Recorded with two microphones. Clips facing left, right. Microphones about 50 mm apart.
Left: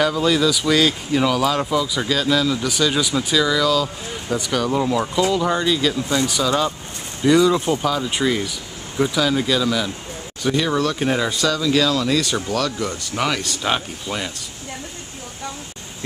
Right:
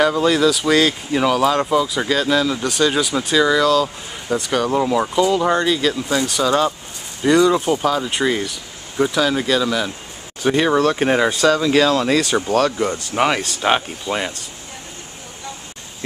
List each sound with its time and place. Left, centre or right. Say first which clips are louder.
0.1 s speech: right 2 dB; centre
1.7 s speech: right 3 dB; right
3.0 s speech: right 1 dB; centre
3.3 s speech: right 4 dB; centre
8.4 s speech: right 1 dB; centre
10.4 s speech: right 4 dB; right